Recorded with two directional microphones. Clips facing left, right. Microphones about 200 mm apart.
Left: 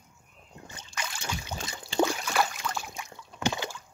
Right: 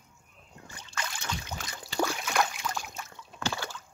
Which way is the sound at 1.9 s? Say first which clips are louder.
Left 3 dB; 20° left (ahead or behind).